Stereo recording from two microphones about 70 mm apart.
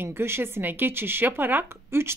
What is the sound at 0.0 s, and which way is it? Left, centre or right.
Speech, right.